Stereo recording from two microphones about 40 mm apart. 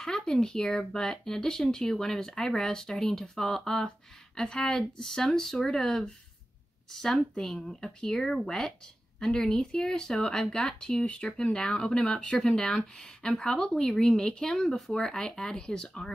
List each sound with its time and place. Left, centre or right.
0.0 s speech: centre